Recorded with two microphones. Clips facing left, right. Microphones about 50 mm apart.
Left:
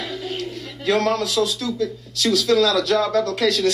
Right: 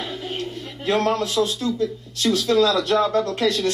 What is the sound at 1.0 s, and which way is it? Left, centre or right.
Speech, right.